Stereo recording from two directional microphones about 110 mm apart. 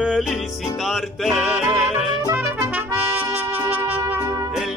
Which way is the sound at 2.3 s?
15° right (ahead or behind).